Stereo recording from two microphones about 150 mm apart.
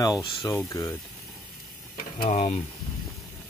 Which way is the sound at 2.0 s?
75° left (ahead or behind).